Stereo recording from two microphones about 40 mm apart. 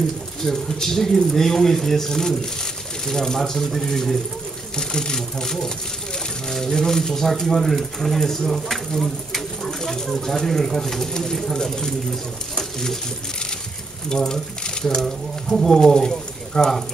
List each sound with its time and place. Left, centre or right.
0.4 s speech: centre
14.0 s speech: centre
15.0 s speech: centre